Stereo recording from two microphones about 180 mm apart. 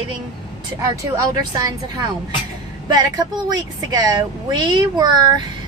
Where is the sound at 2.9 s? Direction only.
20° right (ahead or behind).